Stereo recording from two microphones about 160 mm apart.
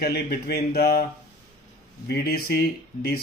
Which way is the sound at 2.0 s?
70° left (ahead or behind).